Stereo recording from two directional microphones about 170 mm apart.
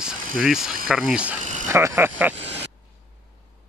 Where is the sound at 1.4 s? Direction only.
45° right (ahead or behind).